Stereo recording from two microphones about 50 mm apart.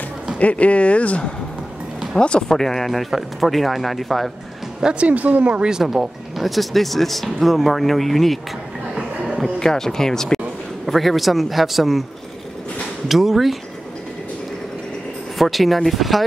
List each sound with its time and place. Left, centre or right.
0.4 s speech: left
2.4 s speech: centre
4.7 s speech: centre
5.0 s speech: right; by 8.4 s centre
9.2 s a sound: centre
9.6 s speech: centre
13.1 s speech: centre
15.3 s speech: centre